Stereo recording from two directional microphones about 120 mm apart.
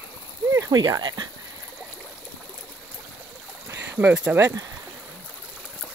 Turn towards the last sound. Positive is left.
turn(degrees=-30)  # may be behind; listen again after turning